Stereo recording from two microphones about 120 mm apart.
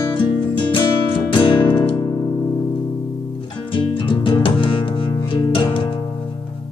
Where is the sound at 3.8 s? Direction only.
45° left (ahead or behind).